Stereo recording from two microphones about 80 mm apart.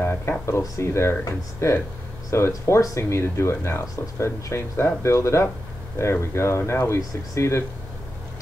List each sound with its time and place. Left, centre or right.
0.0 s speech: left